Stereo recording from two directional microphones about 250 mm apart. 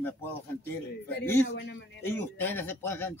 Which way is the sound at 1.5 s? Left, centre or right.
Left.